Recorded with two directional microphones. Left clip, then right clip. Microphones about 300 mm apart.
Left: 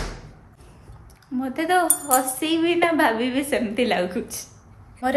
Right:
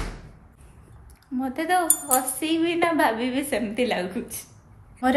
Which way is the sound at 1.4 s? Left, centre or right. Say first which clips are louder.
Left 2 dB; centre.